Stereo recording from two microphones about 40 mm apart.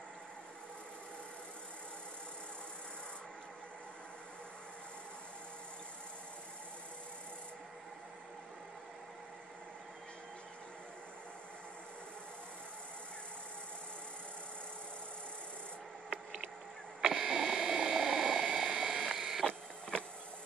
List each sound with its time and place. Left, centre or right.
17.0 s a sound: centre
17.9 s helicopter: centre
19.0 s printer: centre
19.4 s printer: left